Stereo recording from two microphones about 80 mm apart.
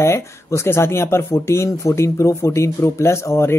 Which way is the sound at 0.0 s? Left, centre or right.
Left.